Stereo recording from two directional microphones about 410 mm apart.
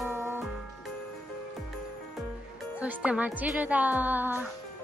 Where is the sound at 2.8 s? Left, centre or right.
Centre.